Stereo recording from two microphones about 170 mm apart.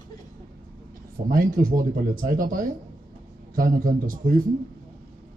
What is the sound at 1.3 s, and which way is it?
A man's voice, 55° right (ahead or behind).